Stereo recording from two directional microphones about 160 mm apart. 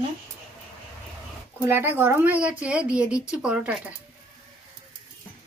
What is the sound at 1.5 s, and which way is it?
Speech, 15° right (ahead or behind).